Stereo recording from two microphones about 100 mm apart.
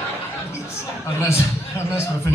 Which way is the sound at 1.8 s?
25° left (ahead or behind).